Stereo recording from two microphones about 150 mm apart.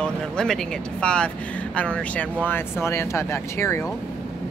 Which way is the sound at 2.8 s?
20° left (ahead or behind).